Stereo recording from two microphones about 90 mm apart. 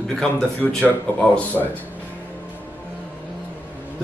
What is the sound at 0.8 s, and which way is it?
Speech, 20° left (ahead or behind).